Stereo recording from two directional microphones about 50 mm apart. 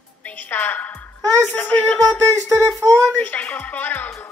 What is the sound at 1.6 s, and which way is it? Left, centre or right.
Speech, left.